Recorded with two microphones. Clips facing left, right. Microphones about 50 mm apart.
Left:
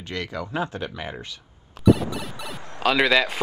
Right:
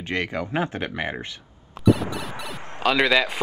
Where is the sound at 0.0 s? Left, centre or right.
Right.